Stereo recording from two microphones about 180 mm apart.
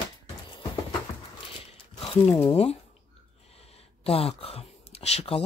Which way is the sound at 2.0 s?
30° left (ahead or behind).